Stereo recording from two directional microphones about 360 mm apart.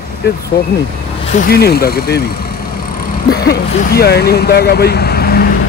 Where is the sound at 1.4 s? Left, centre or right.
Left.